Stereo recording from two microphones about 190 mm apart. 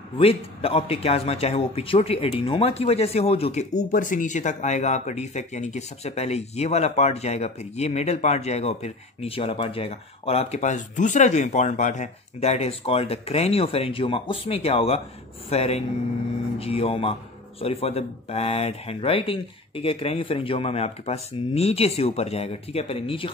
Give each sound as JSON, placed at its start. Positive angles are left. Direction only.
{"t": 0.2, "sound": "speech", "side_deg": 30}